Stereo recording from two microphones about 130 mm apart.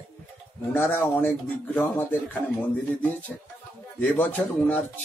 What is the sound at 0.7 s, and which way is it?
Speech, 15° left (ahead or behind).